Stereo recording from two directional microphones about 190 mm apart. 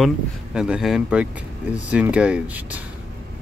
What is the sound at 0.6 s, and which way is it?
Speech, 5° right (ahead or behind).